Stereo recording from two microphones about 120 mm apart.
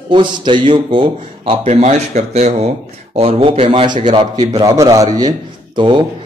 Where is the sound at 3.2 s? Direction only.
50° right (ahead or behind).